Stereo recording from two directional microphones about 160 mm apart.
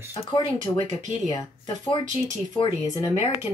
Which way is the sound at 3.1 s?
40° left (ahead or behind).